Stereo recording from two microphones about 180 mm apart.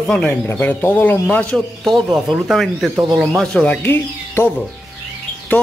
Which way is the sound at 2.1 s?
5° right (ahead or behind).